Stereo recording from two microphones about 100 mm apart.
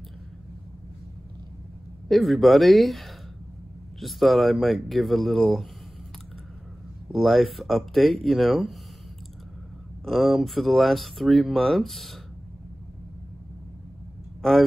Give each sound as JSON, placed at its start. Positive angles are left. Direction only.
{"t": 2.0, "sound": "speech", "side_deg": 0}
{"t": 7.1, "sound": "speech", "side_deg": 0}
{"t": 10.0, "sound": "speech", "side_deg": 0}
{"t": 14.4, "sound": "speech", "side_deg": 5}